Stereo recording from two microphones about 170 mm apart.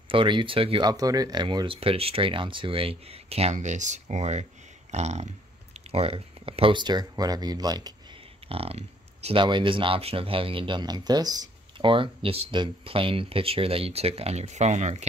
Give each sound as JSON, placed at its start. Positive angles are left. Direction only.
{"t": 0.1, "sound": "speech", "side_deg": -30}
{"t": 8.5, "sound": "speech", "side_deg": -35}